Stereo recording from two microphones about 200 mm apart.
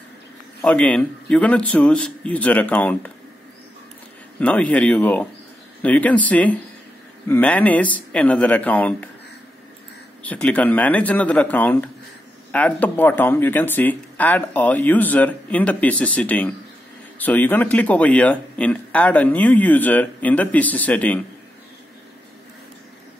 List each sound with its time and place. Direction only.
0.6 s speech: 5° left (ahead or behind)
4.4 s speech: 5° left (ahead or behind)
10.2 s speech: 5° left (ahead or behind)